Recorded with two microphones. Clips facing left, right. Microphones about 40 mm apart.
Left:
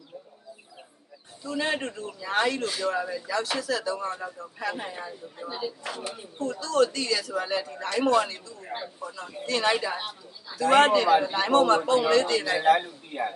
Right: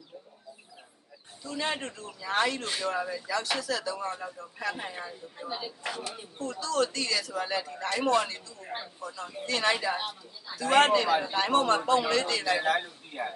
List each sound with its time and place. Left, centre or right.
1.4 s a man's voice: centre
13.1 s speech: left